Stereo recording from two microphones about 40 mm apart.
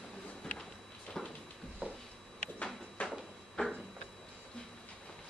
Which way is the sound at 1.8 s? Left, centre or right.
Right.